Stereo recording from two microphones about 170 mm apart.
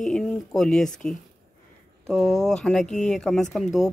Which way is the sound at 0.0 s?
Centre (ahead or behind).